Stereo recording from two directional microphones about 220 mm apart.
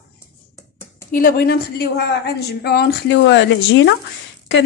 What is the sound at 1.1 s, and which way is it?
A woman's voice, 40° left (ahead or behind).